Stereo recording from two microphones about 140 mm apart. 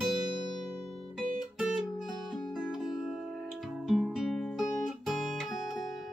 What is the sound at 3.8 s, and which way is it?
Guitar, 5° right (ahead or behind).